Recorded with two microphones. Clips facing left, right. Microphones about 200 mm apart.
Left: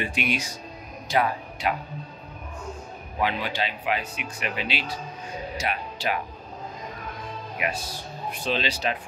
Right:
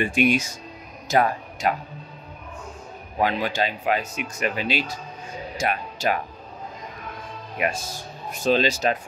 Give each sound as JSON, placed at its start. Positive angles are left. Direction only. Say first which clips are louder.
{"t": 0.0, "sound": "speech", "louder": "right 7 dB", "side_deg": -45}
{"t": 3.2, "sound": "speech", "louder": "right 4 dB", "side_deg": -45}
{"t": 7.6, "sound": "speech", "louder": "right 4 dB", "side_deg": -45}